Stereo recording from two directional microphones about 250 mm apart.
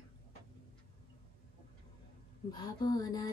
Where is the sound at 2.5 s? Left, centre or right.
Centre.